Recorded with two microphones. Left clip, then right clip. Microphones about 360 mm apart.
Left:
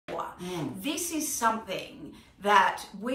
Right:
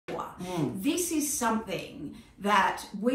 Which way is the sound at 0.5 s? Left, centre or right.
Centre.